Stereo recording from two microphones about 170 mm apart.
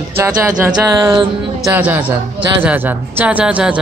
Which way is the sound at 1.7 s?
10° right (ahead or behind).